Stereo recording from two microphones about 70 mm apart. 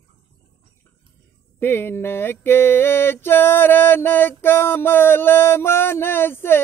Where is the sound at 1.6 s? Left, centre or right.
Left.